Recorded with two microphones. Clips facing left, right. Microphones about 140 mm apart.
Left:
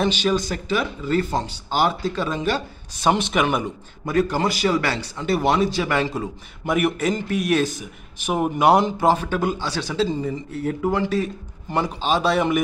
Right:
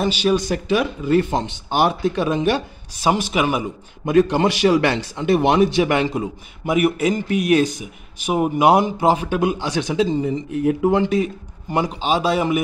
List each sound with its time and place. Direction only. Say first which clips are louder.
0.0 s speech: right 2 dB; 10° right (ahead or behind)
3.1 s speech: right 1 dB; 5° right (ahead or behind)
4.0 s a man's voice: right 5 dB; 20° right (ahead or behind)